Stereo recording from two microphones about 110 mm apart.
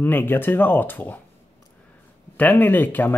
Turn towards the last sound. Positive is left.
turn(degrees=15)  # may be behind; listen again after turning